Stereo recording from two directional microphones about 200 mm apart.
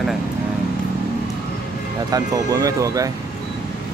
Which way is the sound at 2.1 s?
15° right (ahead or behind).